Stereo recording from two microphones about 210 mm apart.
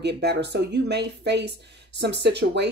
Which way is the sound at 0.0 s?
55° right (ahead or behind).